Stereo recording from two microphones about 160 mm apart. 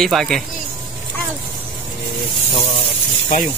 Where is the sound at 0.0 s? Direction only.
Centre (ahead or behind).